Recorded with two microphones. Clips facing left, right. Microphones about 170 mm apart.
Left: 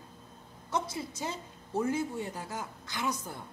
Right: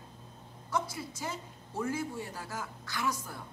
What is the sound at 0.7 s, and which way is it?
Speech, 25° left (ahead or behind).